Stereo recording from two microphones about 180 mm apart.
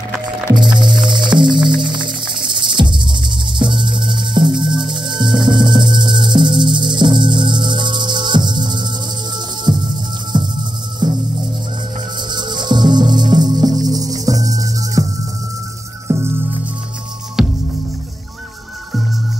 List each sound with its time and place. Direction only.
0.7 s music: 25° right (ahead or behind)
12.3 s music: 25° right (ahead or behind)
16.1 s music: 15° right (ahead or behind)
17.4 s music: 5° right (ahead or behind)